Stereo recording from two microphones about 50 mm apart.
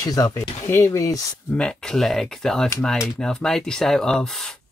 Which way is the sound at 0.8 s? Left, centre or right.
Left.